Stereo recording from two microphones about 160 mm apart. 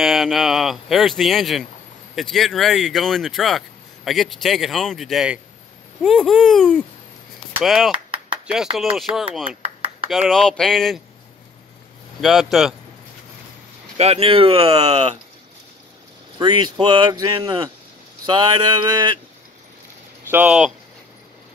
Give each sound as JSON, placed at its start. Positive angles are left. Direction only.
{"t": 0.0, "sound": "speech", "side_deg": 0}
{"t": 9.6, "sound": "a sound", "side_deg": -35}
{"t": 10.2, "sound": "speech", "side_deg": 5}
{"t": 12.2, "sound": "speech", "side_deg": 0}
{"t": 13.9, "sound": "speech", "side_deg": -40}
{"t": 16.3, "sound": "a sound", "side_deg": -25}
{"t": 20.2, "sound": "speech", "side_deg": -10}